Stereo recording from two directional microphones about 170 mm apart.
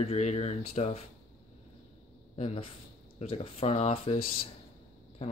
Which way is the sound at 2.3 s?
35° left (ahead or behind).